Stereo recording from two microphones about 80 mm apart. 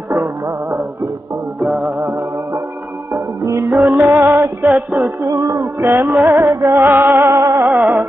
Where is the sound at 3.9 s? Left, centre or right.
Right.